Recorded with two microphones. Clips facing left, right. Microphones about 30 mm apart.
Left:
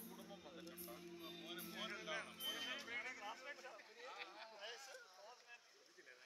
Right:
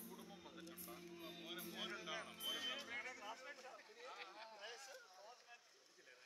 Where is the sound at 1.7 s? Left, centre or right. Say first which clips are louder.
Left 1 dB; centre.